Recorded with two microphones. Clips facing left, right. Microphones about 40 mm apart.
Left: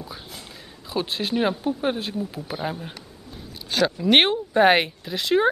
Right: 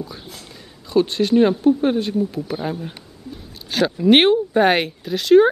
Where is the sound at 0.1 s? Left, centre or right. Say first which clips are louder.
Right 2 dB; centre.